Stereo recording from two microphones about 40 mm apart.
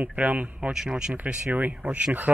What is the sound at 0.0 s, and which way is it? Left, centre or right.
Speech, right.